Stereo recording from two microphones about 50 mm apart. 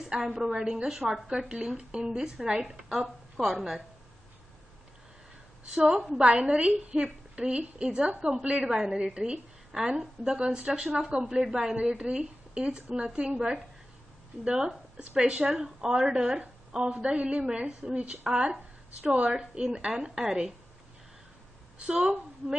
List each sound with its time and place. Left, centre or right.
0.0 s a woman's voice: centre
5.8 s a woman's voice: centre
21.7 s a woman's voice: right
22.0 s a woman's voice: centre